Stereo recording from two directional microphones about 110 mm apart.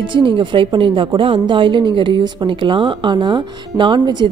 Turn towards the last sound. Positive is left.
turn(degrees=-45)  # may be behind; listen again after turning